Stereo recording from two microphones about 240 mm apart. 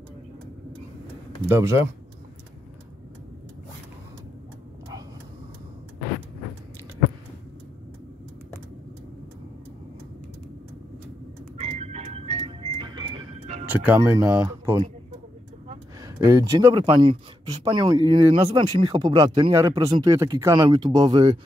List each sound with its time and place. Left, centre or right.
1.4 s speech: centre
11.5 s music: right
13.7 s speech: centre